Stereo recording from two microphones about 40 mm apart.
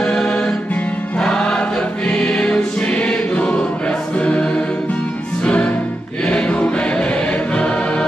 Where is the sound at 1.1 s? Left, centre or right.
Left.